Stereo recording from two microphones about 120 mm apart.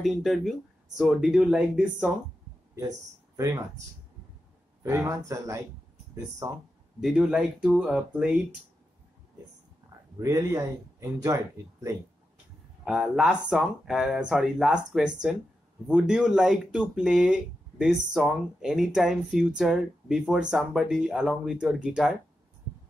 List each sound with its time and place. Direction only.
0.0 s speech: centre (ahead or behind)
2.7 s speech: 25° right (ahead or behind)
4.8 s speech: 25° right (ahead or behind)
7.0 s speech: 5° right (ahead or behind)
10.1 s speech: 30° right (ahead or behind)
12.8 s speech: 5° right (ahead or behind)